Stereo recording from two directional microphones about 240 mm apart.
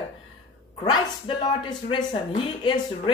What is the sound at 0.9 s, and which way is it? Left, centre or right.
Speech, centre.